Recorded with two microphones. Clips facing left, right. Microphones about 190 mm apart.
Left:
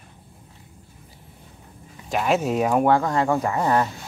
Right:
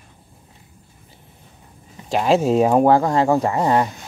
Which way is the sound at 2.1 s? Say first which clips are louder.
Right 5 dB; 30° right (ahead or behind).